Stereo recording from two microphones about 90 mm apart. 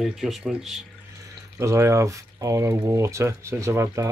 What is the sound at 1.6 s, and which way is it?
Speech, 35° right (ahead or behind).